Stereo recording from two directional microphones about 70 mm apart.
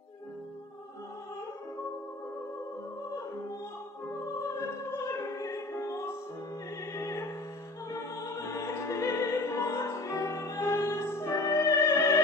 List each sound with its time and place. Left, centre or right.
4.4 s music: left